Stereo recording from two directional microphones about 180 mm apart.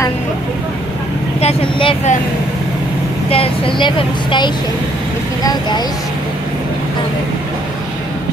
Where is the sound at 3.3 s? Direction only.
30° left (ahead or behind).